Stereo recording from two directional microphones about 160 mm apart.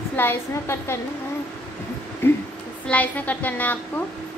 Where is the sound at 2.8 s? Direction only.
10° left (ahead or behind).